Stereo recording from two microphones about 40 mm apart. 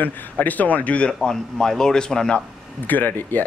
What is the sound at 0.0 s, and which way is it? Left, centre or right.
Speech, left.